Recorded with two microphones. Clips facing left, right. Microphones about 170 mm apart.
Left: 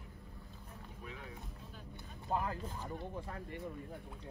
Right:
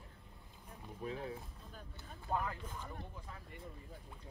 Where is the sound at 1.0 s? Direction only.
35° right (ahead or behind).